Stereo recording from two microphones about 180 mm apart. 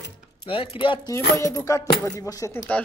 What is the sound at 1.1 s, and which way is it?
Speech, 15° left (ahead or behind).